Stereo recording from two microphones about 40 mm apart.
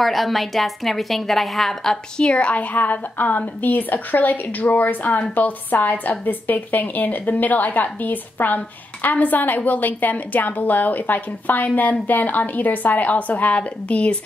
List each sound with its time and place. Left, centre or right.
0.0 s a woman's voice: centre
2.2 s a woman's voice: left